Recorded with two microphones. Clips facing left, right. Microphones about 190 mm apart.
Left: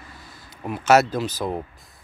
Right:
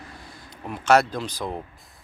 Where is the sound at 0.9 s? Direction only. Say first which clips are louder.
Left 2 dB; 5° left (ahead or behind).